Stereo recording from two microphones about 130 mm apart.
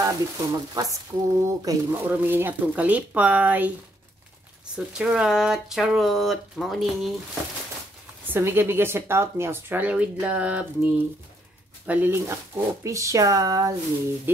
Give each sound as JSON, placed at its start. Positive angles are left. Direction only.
{"t": 0.0, "sound": "speech", "side_deg": -25}
{"t": 2.0, "sound": "speech", "side_deg": -15}
{"t": 4.7, "sound": "speech", "side_deg": -5}
{"t": 8.3, "sound": "speech", "side_deg": -20}